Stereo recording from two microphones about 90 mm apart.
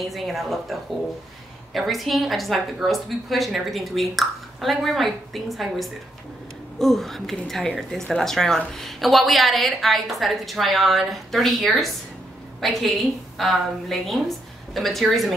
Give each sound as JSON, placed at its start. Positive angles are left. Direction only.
{"t": 0.1, "sound": "a woman's voice", "side_deg": 0}